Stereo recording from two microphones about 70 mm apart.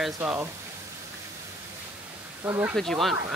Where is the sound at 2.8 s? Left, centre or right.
Centre.